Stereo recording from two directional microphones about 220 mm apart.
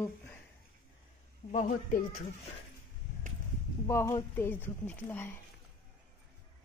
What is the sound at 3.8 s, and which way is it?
Speech, 15° left (ahead or behind).